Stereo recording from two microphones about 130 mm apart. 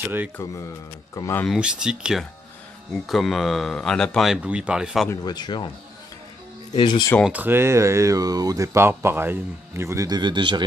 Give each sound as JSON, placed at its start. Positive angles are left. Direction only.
{"t": 1.1, "sound": "speech", "side_deg": 25}
{"t": 1.5, "sound": "speech", "side_deg": -5}
{"t": 5.1, "sound": "speech", "side_deg": 30}
{"t": 6.7, "sound": "speech", "side_deg": 35}
{"t": 7.2, "sound": "speech", "side_deg": -15}